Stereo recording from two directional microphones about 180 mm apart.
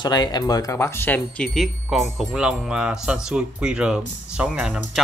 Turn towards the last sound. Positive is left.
turn(degrees=-5)  # may be behind; listen again after turning